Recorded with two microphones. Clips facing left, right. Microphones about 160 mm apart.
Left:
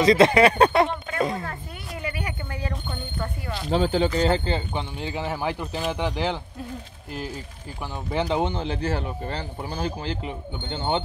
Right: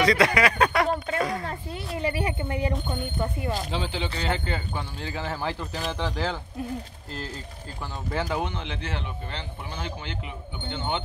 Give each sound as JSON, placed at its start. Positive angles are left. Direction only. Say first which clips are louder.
{"t": 0.0, "sound": "speech", "louder": "left 5 dB", "side_deg": 25}
{"t": 1.4, "sound": "speech", "louder": "right 2 dB", "side_deg": -25}
{"t": 3.7, "sound": "speech", "louder": "left 9 dB", "side_deg": 45}
{"t": 4.2, "sound": "speech", "louder": "left 6 dB", "side_deg": 30}
{"t": 4.9, "sound": "speech", "louder": "left 3 dB", "side_deg": 15}